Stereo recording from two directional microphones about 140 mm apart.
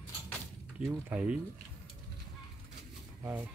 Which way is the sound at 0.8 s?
10° right (ahead or behind).